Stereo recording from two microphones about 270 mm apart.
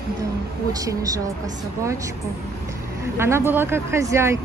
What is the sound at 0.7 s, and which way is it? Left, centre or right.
Speech, centre.